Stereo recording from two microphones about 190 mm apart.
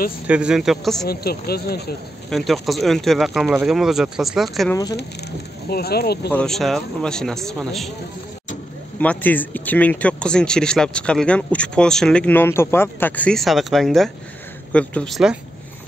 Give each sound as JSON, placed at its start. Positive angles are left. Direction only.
{"t": 0.3, "sound": "speech", "side_deg": -5}
{"t": 1.0, "sound": "speech", "side_deg": 55}
{"t": 2.2, "sound": "speech", "side_deg": 0}
{"t": 5.7, "sound": "speech", "side_deg": 55}
{"t": 6.3, "sound": "speech", "side_deg": 5}
{"t": 9.0, "sound": "speech", "side_deg": 10}